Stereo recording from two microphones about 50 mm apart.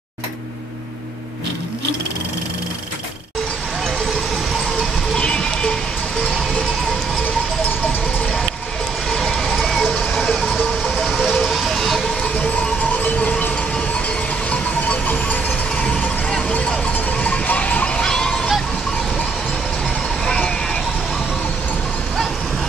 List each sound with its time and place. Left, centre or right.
5.1 s cowbell: centre
9.1 s a sound: centre
9.8 s a sound: centre
10.2 s vehicle: centre
10.8 s vehicle: centre
12.4 s music: left
16.3 s a sound: centre
17.2 s music: left
20.2 s sheep: left